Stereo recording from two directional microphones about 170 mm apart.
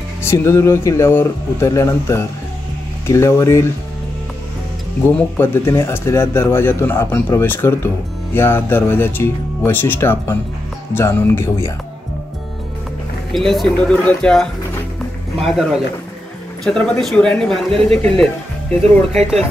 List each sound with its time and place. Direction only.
0.2 s speech: 15° left (ahead or behind)
5.0 s speech: 15° left (ahead or behind)
13.3 s speech: centre (ahead or behind)